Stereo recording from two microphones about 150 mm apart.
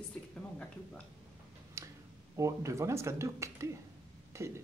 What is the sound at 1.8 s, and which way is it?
Finger snapping, 20° right (ahead or behind).